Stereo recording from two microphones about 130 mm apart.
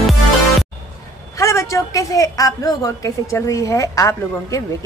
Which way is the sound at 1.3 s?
25° left (ahead or behind).